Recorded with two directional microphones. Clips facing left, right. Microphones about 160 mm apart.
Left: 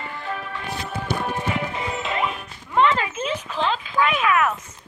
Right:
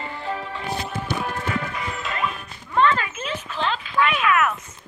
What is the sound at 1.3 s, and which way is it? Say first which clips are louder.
Music: left 2 dB; 20° left (ahead or behind).